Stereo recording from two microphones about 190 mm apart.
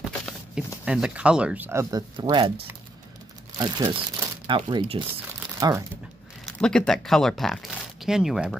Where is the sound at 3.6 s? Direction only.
25° right (ahead or behind).